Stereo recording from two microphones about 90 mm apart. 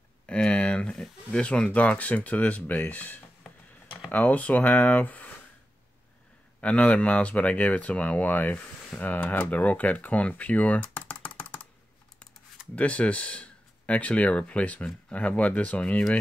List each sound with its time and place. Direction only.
0.3 s speech: 10° left (ahead or behind)
3.4 s a sound: centre (ahead or behind)
4.1 s speech: 15° left (ahead or behind)
6.6 s speech: 15° left (ahead or behind)
11.2 s computer keyboard: 15° left (ahead or behind)
12.7 s speech: 15° left (ahead or behind)